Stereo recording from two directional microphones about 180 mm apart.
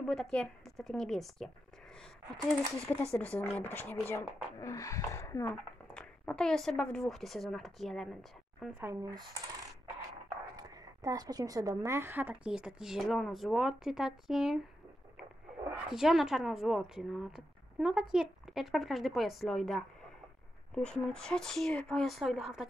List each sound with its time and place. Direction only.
0.0 s speech: 5° left (ahead or behind)
2.9 s speech: 10° left (ahead or behind)
8.7 s speech: 15° right (ahead or behind)
10.5 s speech: 20° right (ahead or behind); by 22.7 s centre (ahead or behind)